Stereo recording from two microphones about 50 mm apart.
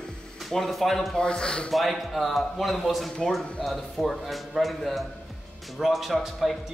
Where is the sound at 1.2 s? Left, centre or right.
Centre.